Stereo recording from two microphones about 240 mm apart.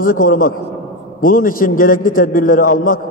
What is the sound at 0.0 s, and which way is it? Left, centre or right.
A man's voice, left.